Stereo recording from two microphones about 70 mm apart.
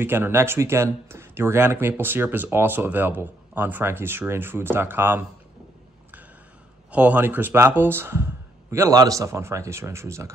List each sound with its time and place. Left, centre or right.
0.0 s speech: right
6.9 s speech: right
8.9 s speech: right